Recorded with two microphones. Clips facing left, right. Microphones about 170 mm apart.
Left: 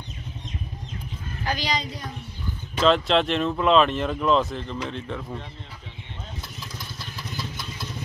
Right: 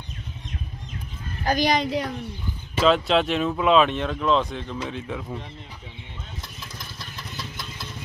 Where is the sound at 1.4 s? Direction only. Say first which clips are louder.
Right 6 dB; 45° right (ahead or behind); by 2.1 s 70° right (ahead or behind).